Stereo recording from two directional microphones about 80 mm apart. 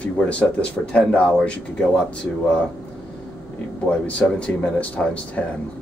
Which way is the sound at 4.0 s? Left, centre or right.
Centre.